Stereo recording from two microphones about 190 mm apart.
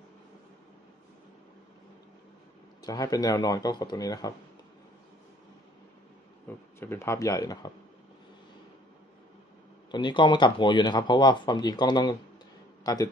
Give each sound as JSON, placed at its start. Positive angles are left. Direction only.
{"t": 2.8, "sound": "speech", "side_deg": 20}
{"t": 6.4, "sound": "speech", "side_deg": 10}
{"t": 9.8, "sound": "a man's voice", "side_deg": 25}